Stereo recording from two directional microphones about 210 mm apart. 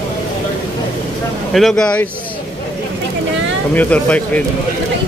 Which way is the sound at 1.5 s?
Centre (ahead or behind).